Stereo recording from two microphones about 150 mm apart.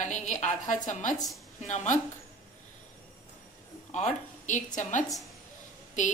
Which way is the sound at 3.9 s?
50° left (ahead or behind).